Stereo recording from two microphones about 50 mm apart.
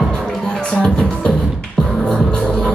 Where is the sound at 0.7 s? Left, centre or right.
Centre.